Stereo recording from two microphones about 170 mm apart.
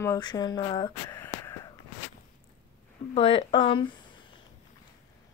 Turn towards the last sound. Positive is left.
turn(degrees=30)  # may be behind; listen again after turning